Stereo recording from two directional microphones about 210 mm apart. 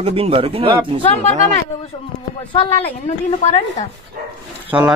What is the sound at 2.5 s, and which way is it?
Speech, 25° left (ahead or behind).